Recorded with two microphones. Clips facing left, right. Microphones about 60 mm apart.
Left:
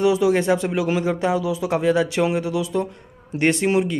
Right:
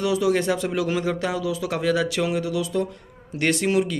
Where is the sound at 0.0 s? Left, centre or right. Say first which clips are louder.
Left 4 dB; left.